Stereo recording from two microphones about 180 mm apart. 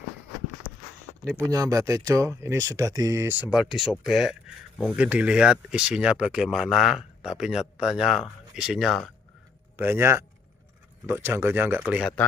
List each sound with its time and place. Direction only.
1.3 s speech: 20° right (ahead or behind); by 9.1 s centre (ahead or behind)
9.8 s speech: 10° right (ahead or behind)
11.8 s speech: centre (ahead or behind)